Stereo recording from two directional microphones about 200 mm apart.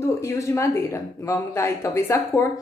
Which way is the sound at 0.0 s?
15° left (ahead or behind).